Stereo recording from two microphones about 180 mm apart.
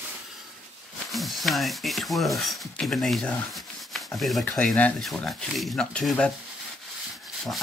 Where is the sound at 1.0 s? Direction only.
Centre (ahead or behind).